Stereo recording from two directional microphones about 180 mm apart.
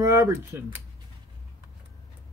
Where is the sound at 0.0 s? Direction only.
15° right (ahead or behind).